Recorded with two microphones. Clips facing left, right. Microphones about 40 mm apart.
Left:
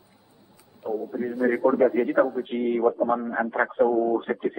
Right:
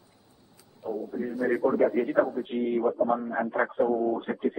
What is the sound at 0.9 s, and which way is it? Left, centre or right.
Speech, centre.